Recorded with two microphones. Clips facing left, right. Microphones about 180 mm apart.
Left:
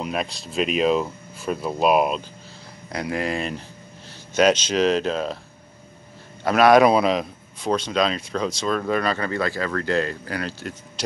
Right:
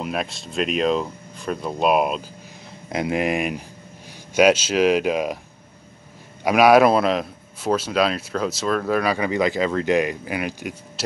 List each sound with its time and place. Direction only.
0.0 s speech: centre (ahead or behind)
2.9 s a man's voice: 20° right (ahead or behind)
6.4 s a man's voice: 10° right (ahead or behind)